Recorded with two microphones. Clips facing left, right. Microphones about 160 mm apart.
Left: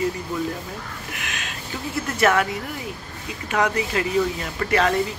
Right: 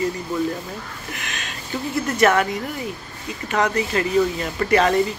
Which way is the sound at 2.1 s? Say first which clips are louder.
Right 2 dB; 5° left (ahead or behind).